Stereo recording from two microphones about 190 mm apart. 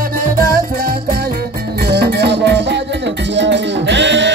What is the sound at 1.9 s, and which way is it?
Music, 60° right (ahead or behind).